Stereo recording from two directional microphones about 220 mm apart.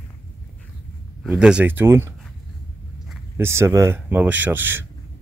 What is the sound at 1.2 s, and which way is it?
Speech, 5° right (ahead or behind).